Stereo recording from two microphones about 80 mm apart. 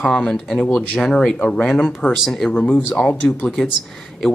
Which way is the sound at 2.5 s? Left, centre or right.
Centre.